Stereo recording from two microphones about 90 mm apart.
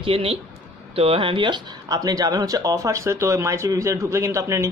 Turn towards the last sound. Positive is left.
turn(degrees=-30)  # may be behind; listen again after turning